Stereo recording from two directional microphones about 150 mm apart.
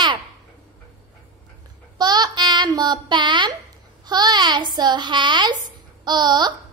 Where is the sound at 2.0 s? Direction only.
30° right (ahead or behind).